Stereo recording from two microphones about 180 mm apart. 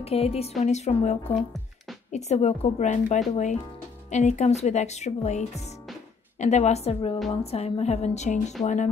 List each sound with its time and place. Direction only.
0.0 s a woman's voice: 35° left (ahead or behind)